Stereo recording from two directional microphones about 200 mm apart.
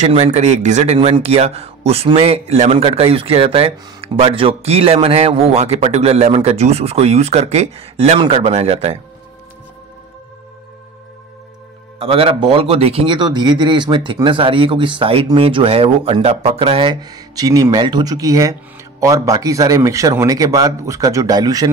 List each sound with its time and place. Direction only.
0.0 s speech: 35° right (ahead or behind)
12.0 s speech: 30° right (ahead or behind)